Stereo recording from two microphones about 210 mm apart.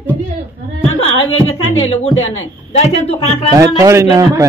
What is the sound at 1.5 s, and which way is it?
Speech, 30° left (ahead or behind).